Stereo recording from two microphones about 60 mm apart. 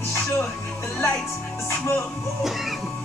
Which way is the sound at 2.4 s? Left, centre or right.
Centre.